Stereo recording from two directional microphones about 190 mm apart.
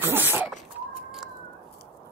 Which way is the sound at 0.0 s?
10° right (ahead or behind).